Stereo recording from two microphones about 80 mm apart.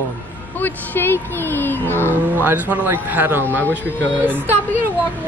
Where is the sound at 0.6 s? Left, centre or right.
Left.